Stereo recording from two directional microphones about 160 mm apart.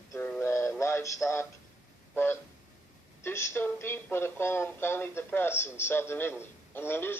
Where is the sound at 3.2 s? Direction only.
15° left (ahead or behind).